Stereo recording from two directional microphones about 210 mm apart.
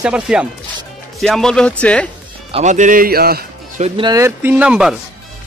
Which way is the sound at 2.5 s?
35° right (ahead or behind).